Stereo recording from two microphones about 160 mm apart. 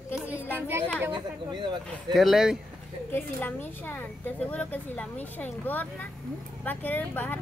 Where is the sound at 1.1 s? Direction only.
30° right (ahead or behind).